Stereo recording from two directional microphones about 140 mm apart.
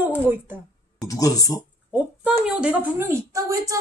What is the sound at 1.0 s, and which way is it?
Speech, 25° left (ahead or behind).